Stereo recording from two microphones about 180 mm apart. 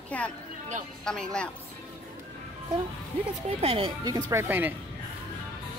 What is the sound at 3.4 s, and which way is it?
Speech, 30° right (ahead or behind).